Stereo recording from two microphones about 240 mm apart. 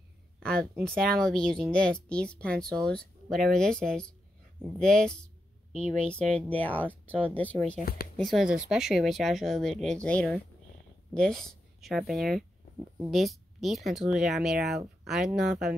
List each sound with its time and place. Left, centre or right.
0.4 s speech: centre
7.8 s speech: left
8.2 s speech: centre